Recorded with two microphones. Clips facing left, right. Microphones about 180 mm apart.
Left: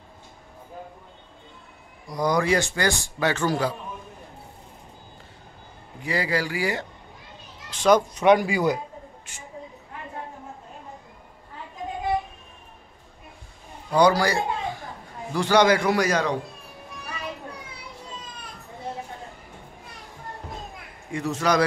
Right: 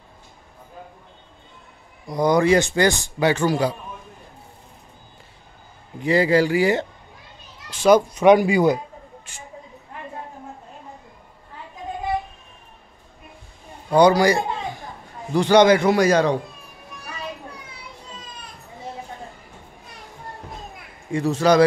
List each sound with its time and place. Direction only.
2.0 s a man's voice: 25° right (ahead or behind)
6.0 s a man's voice: 25° right (ahead or behind)
7.7 s a child's voice: 10° right (ahead or behind)
8.5 s a man's voice: 25° right (ahead or behind)
13.8 s a man's voice: 25° right (ahead or behind)
21.1 s a man's voice: 30° right (ahead or behind)